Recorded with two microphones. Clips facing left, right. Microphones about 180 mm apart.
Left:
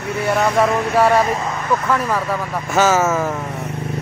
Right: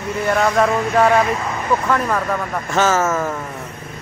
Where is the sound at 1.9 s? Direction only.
5° left (ahead or behind).